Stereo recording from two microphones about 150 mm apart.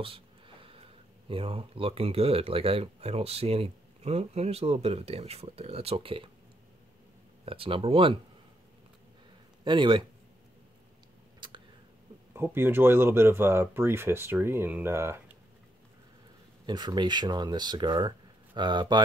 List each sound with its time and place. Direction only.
0.0 s a sound: 35° right (ahead or behind)
1.3 s speech: 35° right (ahead or behind)
7.4 s speech: 40° right (ahead or behind)
9.7 s speech: 35° right (ahead or behind)
11.4 s a sound: 35° right (ahead or behind)
12.4 s speech: 15° right (ahead or behind)
16.6 s speech: 30° right (ahead or behind)